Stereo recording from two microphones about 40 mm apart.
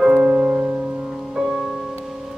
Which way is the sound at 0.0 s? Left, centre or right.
Centre.